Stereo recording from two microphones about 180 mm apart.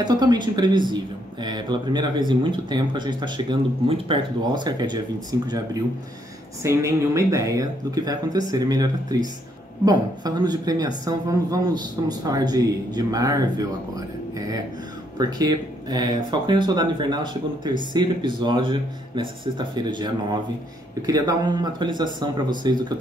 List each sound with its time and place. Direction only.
0.0 s speech: 25° right (ahead or behind)
6.6 s speech: 15° right (ahead or behind)
15.1 s speech: 20° right (ahead or behind)